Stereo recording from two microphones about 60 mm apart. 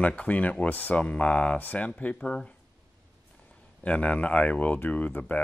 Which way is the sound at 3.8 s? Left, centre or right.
Left.